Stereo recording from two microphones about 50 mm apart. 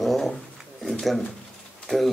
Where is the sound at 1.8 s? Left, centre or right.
Centre.